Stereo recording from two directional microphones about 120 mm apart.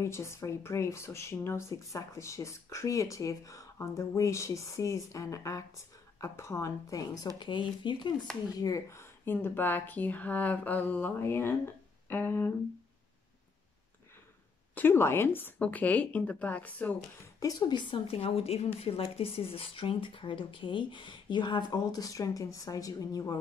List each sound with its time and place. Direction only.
0.0 s speech: 25° left (ahead or behind)
7.3 s speech: 40° left (ahead or behind)
8.5 s speech: 30° left (ahead or behind)
14.8 s speech: 20° left (ahead or behind)
17.4 s speech: 30° left (ahead or behind)